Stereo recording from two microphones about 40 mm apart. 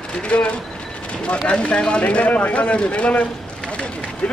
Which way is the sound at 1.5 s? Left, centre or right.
Left.